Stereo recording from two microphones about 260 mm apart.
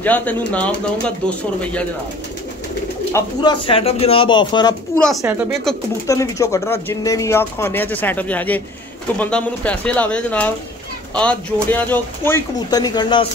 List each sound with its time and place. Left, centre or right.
0.0 s speech: centre
3.1 s speech: centre
4.9 s speech: centre
6.0 s speech: centre